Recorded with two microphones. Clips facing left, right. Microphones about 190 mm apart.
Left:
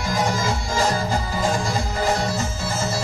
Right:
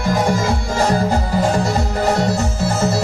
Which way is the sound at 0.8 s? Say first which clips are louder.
Right 6 dB; 65° right (ahead or behind).